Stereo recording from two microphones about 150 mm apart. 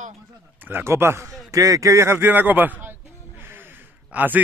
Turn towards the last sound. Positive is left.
turn(degrees=-10)  # may be behind; listen again after turning